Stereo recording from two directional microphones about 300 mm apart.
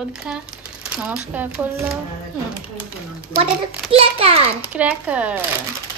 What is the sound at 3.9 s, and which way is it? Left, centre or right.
Speech, centre.